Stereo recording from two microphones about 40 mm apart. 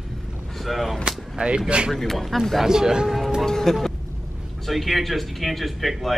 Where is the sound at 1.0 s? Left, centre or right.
Right.